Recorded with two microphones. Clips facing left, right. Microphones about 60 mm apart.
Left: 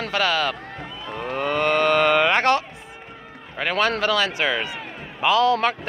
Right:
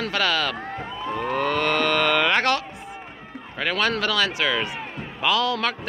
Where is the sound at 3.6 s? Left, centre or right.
Centre.